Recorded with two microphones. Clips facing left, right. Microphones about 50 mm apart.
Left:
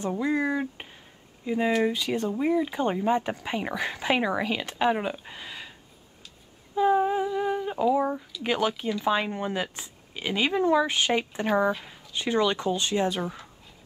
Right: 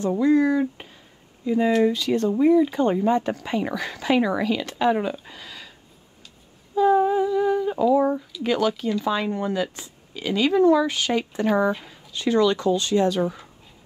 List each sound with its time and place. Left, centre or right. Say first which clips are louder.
0.2 s speech: right 8 dB; centre
6.7 s humming: right 4 dB; left
8.0 s speech: right 5 dB; centre
8.5 s speech: right 4 dB; left
11.4 s speech: right 3 dB; centre